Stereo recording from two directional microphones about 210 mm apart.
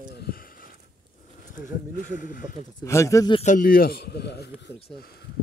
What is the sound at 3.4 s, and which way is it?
A man's voice, 40° left (ahead or behind).